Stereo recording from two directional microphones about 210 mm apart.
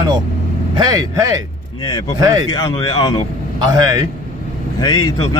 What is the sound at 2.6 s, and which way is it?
Speech, 15° left (ahead or behind).